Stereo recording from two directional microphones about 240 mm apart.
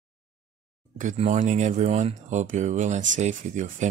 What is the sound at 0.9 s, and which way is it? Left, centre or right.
Speech, right.